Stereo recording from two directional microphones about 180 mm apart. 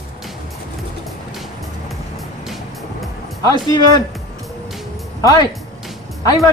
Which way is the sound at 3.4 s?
20° left (ahead or behind).